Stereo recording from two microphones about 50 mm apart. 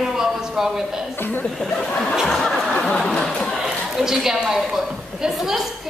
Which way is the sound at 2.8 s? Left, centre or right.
Centre.